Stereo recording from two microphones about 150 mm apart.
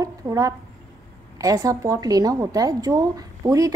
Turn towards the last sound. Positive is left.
turn(degrees=-25)  # may be behind; listen again after turning